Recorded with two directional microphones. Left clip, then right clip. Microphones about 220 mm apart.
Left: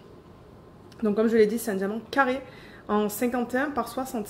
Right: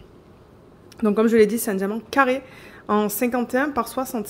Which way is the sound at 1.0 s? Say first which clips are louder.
Right 4 dB; 35° right (ahead or behind).